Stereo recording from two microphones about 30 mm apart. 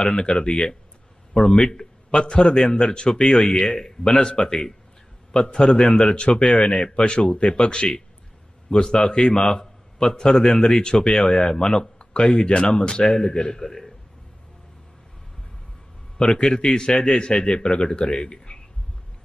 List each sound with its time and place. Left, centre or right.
0.0 s a man's voice: left
0.5 s a man's voice: left
1.6 s a man's voice: centre
2.1 s a man's voice: left
3.1 s a man's voice: centre
6.1 s a man's voice: left
7.5 s a man's voice: left
8.8 s a man's voice: centre
16.3 s a man's voice: left